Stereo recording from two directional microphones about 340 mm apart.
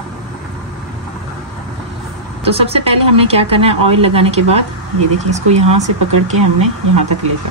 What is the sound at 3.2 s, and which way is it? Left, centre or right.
Speech, centre.